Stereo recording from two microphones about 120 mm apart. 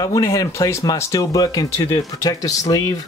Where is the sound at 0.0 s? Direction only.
25° left (ahead or behind).